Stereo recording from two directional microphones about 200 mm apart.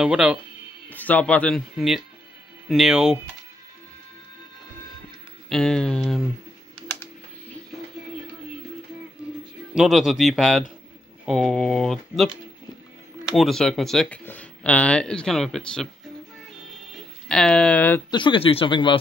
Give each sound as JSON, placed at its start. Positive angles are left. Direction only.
{"t": 0.0, "sound": "speech", "side_deg": -5}
{"t": 0.8, "sound": "speech", "side_deg": 10}
{"t": 5.5, "sound": "speech", "side_deg": 5}
{"t": 9.8, "sound": "speech", "side_deg": 0}
{"t": 13.3, "sound": "speech", "side_deg": 0}
{"t": 17.3, "sound": "speech", "side_deg": 5}
{"t": 18.1, "sound": "speech", "side_deg": 25}